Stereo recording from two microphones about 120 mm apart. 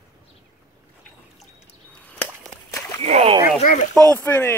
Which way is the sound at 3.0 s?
60° right (ahead or behind).